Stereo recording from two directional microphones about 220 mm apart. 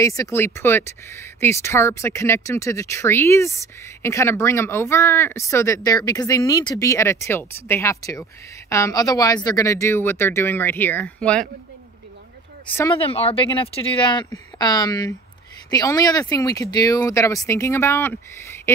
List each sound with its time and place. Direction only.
0.0 s speech: 15° left (ahead or behind)
12.9 s speech: 25° left (ahead or behind)